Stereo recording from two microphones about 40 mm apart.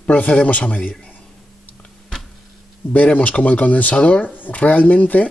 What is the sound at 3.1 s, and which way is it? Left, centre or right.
Speech, left.